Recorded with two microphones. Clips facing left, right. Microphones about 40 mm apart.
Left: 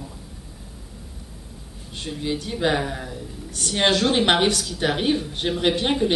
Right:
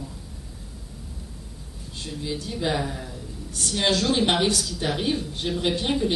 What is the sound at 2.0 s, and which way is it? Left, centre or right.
Speech, left.